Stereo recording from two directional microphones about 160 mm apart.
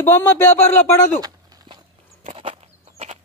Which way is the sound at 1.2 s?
25° right (ahead or behind).